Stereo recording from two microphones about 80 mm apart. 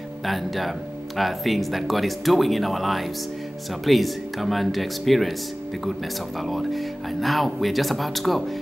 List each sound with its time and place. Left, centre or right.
0.2 s speech: centre
6.4 s speech: centre